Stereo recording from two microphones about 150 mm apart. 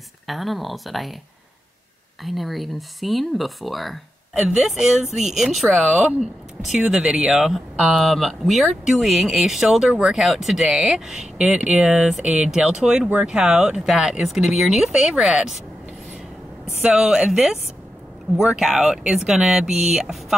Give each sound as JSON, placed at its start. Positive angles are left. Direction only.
{"t": 0.3, "sound": "speech", "side_deg": 0}
{"t": 2.2, "sound": "speech", "side_deg": 0}
{"t": 16.8, "sound": "speech", "side_deg": -5}